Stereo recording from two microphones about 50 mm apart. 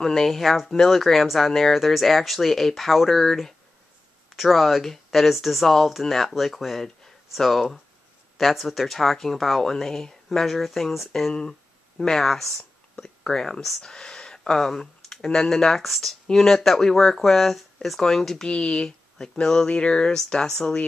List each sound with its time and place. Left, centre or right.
0.0 s speech: centre